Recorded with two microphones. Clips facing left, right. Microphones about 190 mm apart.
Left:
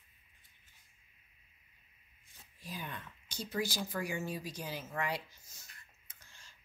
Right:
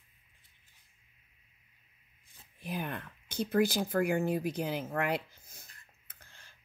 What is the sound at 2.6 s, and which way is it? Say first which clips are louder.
Speech: right 7 dB; 60° right (ahead or behind).